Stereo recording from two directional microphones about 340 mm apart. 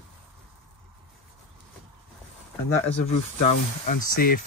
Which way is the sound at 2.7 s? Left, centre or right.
Left.